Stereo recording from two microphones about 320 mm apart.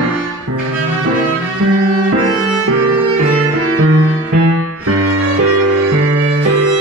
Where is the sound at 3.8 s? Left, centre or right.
Right.